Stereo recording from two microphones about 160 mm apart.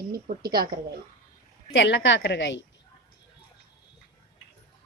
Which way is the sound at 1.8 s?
90° left.